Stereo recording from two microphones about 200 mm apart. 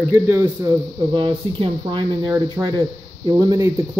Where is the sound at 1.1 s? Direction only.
25° right (ahead or behind).